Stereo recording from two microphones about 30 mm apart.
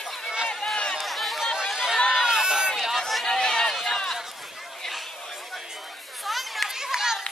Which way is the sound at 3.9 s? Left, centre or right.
Centre.